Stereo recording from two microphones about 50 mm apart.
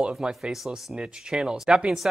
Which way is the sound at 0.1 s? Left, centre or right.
Centre.